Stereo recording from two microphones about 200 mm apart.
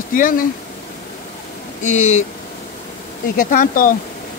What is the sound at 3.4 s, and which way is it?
Speech, 40° left (ahead or behind).